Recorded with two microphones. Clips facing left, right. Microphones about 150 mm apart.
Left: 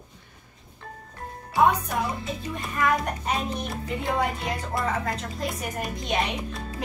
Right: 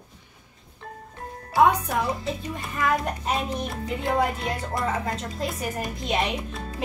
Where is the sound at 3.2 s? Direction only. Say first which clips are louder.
Right 1 dB; centre (ahead or behind).